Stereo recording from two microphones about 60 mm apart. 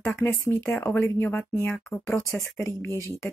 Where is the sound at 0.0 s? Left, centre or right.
Left.